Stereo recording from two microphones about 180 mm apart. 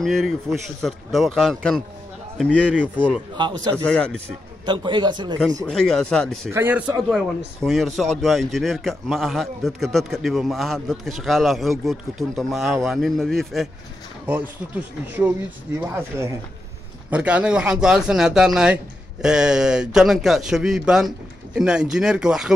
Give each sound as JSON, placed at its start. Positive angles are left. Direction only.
{"t": 0.0, "sound": "a man's voice", "side_deg": 0}
{"t": 4.6, "sound": "a man's voice", "side_deg": -25}
{"t": 5.7, "sound": "a man's voice", "side_deg": 5}
{"t": 6.5, "sound": "a man's voice", "side_deg": -15}
{"t": 14.8, "sound": "a man's voice", "side_deg": -10}